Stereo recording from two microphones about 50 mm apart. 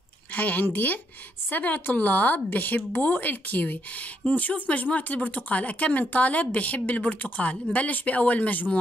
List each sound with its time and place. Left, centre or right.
0.3 s speech: left